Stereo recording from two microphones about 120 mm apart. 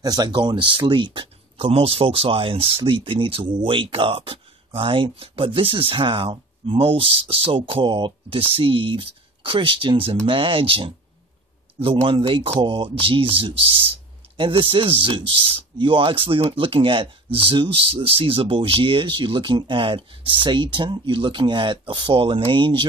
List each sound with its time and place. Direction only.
0.0 s speech: 30° right (ahead or behind)